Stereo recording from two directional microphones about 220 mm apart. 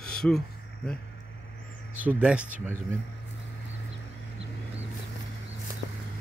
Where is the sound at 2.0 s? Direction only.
5° right (ahead or behind).